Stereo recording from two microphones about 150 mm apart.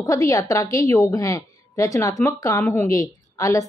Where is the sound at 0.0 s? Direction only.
20° left (ahead or behind).